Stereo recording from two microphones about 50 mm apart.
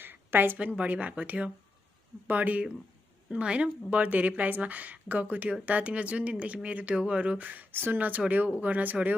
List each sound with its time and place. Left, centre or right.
0.0 s a sound: right
0.7 s a woman's voice: right
3.3 s a woman's voice: right